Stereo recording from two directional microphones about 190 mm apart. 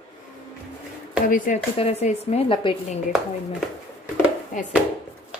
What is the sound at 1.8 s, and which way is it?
A woman's voice, 35° left (ahead or behind).